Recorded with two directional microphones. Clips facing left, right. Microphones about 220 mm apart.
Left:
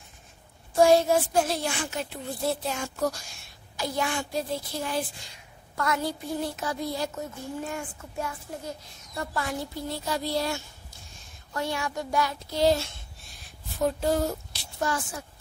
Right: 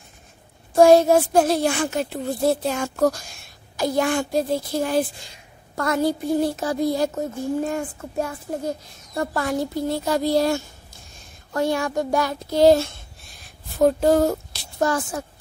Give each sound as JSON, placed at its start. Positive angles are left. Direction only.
{"t": 0.7, "sound": "speech", "side_deg": -45}